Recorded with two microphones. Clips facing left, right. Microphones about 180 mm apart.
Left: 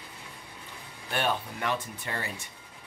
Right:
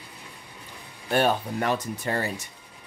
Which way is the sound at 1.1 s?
40° right (ahead or behind).